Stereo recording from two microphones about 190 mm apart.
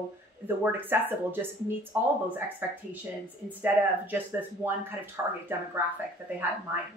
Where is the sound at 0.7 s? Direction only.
10° right (ahead or behind).